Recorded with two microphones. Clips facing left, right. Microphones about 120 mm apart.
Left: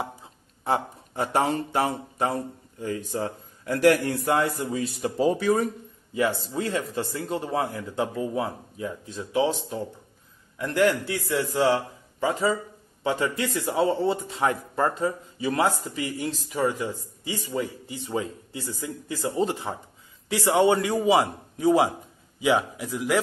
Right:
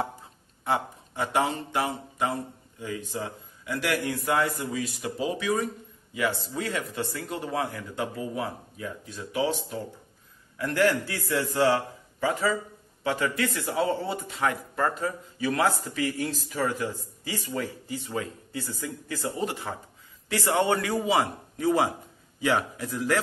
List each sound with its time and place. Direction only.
0.7 s a man's voice: 35° left (ahead or behind)
4.6 s speech: 30° left (ahead or behind)
6.1 s a man's voice: 30° left (ahead or behind)